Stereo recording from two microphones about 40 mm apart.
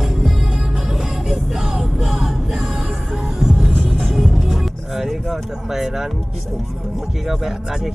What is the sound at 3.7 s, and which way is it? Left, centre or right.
Music, right.